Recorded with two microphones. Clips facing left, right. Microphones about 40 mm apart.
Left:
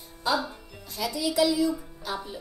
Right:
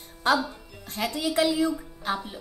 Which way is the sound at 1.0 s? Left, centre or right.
Right.